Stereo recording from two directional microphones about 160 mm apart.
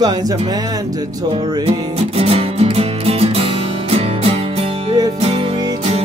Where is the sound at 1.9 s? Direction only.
40° right (ahead or behind).